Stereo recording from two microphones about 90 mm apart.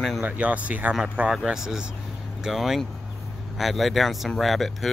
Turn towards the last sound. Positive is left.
turn(degrees=0)  # may be behind; listen again after turning